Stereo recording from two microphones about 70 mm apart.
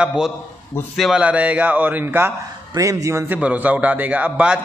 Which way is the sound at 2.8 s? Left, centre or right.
Right.